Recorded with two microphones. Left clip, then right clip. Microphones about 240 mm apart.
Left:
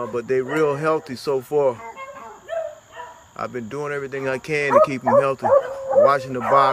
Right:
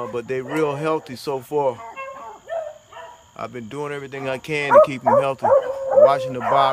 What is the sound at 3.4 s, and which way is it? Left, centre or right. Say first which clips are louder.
Speech: left 2 dB; centre.